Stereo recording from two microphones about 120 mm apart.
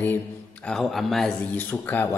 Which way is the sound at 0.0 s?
15° left (ahead or behind).